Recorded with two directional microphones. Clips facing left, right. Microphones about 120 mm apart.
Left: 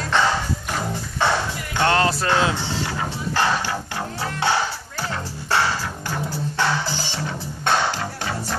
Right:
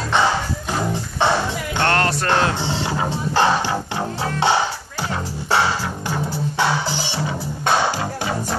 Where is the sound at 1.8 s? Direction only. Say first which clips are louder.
Left 1 dB; 10° left (ahead or behind).